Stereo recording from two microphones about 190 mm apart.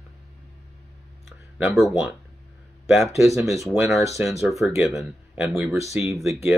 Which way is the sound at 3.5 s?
Centre (ahead or behind).